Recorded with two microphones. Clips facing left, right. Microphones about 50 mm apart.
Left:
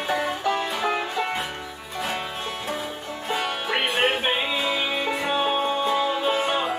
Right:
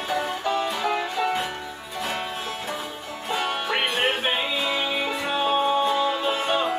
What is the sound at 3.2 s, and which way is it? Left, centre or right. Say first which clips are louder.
Music: right 1 dB; centre.